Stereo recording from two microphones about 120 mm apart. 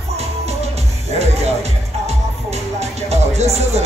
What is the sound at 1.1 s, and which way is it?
Music, 65° right (ahead or behind).